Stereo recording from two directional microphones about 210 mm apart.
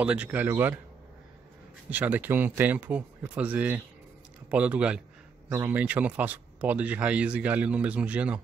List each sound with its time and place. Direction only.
0.0 s speech: 5° right (ahead or behind)
1.9 s speech: 5° right (ahead or behind)